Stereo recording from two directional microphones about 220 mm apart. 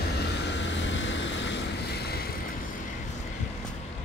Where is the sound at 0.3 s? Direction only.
55° left (ahead or behind).